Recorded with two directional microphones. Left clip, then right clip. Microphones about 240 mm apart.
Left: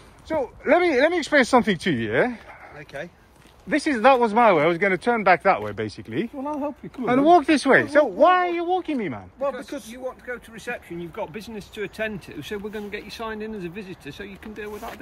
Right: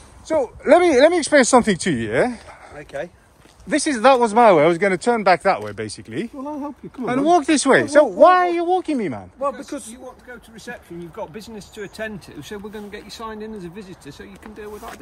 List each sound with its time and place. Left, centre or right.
0.3 s speech: right
2.8 s speech: right
3.6 s speech: centre
9.4 s speech: right
10.5 s speech: centre
11.1 s speech: centre